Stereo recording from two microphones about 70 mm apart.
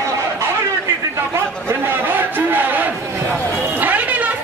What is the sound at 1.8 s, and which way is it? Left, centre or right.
Chatter, right.